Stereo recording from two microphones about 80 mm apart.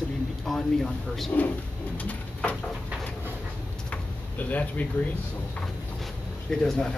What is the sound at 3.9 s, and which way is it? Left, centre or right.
Drawer open or close, centre.